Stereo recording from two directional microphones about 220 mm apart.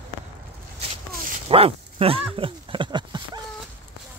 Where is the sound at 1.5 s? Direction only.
25° right (ahead or behind).